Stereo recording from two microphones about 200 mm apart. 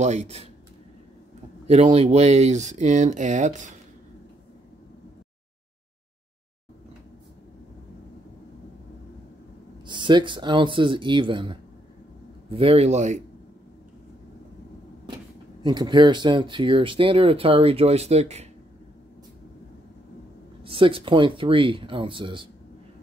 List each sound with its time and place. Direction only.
0.0 s speech: 35° right (ahead or behind)
1.7 s speech: 30° right (ahead or behind)
9.8 s speech: 25° right (ahead or behind)
15.6 s speech: 20° right (ahead or behind)
20.6 s speech: 25° right (ahead or behind)